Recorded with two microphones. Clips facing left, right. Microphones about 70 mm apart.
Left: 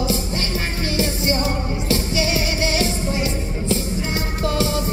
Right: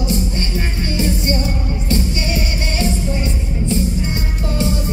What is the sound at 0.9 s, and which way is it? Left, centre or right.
Music, left.